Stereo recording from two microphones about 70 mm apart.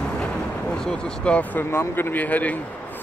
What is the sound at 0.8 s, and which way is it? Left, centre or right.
Speech, centre.